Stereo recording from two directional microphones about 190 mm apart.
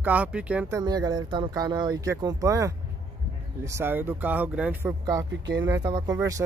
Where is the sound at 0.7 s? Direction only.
20° right (ahead or behind).